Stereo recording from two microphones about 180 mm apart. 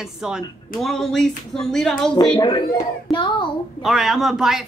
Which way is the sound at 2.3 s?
25° left (ahead or behind).